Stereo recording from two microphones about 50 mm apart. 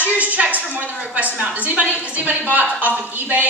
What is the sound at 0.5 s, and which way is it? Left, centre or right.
Speech, left.